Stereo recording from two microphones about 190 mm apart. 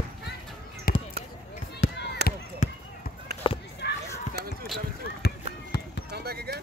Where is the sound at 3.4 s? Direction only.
25° left (ahead or behind).